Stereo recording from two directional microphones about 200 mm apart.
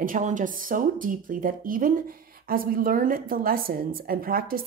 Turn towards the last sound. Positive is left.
turn(degrees=-45)  # may be behind; listen again after turning